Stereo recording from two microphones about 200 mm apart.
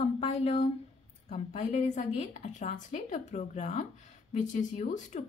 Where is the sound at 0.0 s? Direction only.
30° left (ahead or behind).